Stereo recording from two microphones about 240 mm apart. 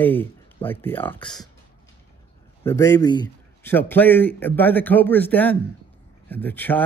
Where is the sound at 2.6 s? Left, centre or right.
Centre.